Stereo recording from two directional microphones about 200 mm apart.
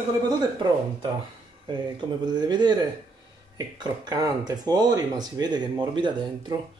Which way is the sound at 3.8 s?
20° right (ahead or behind).